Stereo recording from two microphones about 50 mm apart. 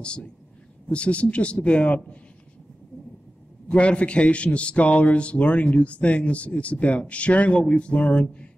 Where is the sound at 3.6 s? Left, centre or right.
Left.